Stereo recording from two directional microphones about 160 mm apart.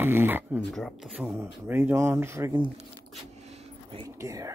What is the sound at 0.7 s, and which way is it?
Speech, centre (ahead or behind).